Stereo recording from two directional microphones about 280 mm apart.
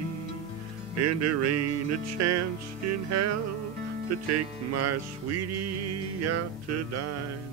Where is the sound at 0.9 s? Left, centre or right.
Right.